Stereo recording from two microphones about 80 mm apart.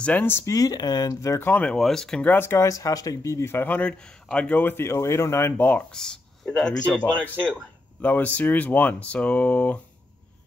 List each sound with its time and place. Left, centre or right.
0.0 s speech: left
0.5 s speech: left
1.4 s speech: centre
1.8 s speech: centre
2.2 s speech: left
2.7 s speech: left
4.0 s a man's voice: centre; by 5.5 s left
5.6 s speech: centre
5.9 s a man's voice: centre